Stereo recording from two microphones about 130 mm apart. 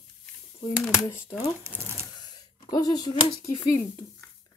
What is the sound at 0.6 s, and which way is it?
Speech, 20° left (ahead or behind).